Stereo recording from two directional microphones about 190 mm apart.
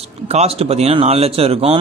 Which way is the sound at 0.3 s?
35° right (ahead or behind).